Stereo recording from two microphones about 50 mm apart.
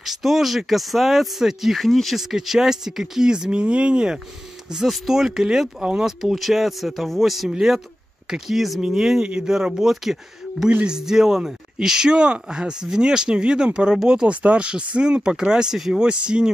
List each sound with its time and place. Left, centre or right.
0.0 s speech: centre
1.9 s speech: centre
2.1 s speech: centre
7.4 s speech: centre